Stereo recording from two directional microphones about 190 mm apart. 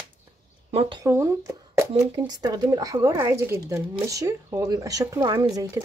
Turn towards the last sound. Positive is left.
turn(degrees=-20)  # may be behind; listen again after turning